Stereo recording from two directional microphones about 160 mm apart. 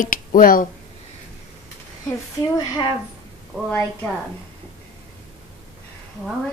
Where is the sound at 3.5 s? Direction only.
Centre (ahead or behind).